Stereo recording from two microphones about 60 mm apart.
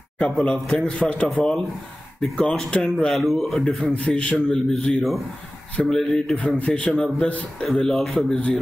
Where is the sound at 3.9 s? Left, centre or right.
Centre.